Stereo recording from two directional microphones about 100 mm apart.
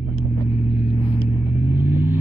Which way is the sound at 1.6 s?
20° right (ahead or behind).